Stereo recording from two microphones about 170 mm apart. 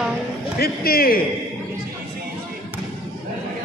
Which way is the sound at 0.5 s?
65° left (ahead or behind).